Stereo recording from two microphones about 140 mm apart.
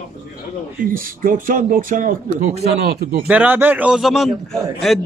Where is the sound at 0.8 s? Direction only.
90° right; by 2.5 s 70° right (ahead or behind).